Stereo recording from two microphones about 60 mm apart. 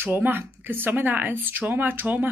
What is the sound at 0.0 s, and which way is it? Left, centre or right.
Speech, right.